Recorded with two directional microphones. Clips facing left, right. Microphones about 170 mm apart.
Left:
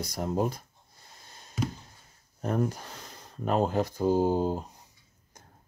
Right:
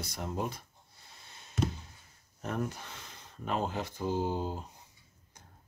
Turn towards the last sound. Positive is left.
turn(degrees=40)  # may be behind; listen again after turning